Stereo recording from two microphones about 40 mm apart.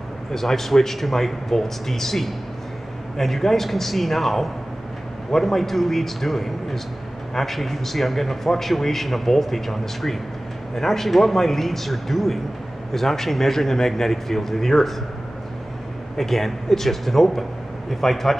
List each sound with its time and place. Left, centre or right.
0.3 s a man's voice: centre
16.2 s a man's voice: centre